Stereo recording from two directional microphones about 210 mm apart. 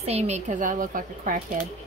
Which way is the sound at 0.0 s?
30° right (ahead or behind).